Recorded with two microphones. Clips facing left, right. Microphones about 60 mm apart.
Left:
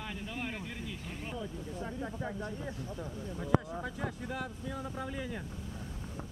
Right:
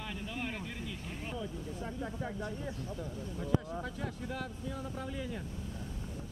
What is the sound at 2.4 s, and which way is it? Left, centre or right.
Speech, left.